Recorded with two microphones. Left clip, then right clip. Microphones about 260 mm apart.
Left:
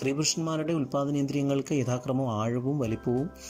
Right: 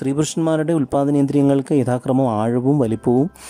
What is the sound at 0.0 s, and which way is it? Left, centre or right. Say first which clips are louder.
Speech: right 9 dB; right.